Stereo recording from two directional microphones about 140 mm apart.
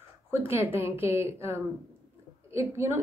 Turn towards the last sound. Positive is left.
turn(degrees=-20)  # may be behind; listen again after turning